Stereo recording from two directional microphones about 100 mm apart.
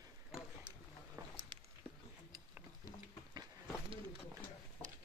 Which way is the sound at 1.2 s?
30° right (ahead or behind).